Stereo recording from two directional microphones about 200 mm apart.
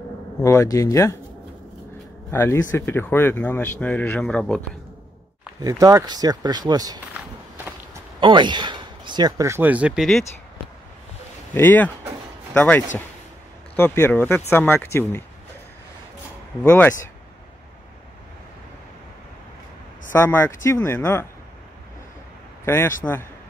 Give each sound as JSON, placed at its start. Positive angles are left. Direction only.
{"t": 0.4, "sound": "speech", "side_deg": 15}
{"t": 2.3, "sound": "speech", "side_deg": 10}
{"t": 5.6, "sound": "speech", "side_deg": -15}
{"t": 7.2, "sound": "walk", "side_deg": -5}
{"t": 8.2, "sound": "speech", "side_deg": -25}
{"t": 11.5, "sound": "speech", "side_deg": 10}
{"t": 16.6, "sound": "speech", "side_deg": 10}
{"t": 20.1, "sound": "speech", "side_deg": 10}
{"t": 22.7, "sound": "speech", "side_deg": 10}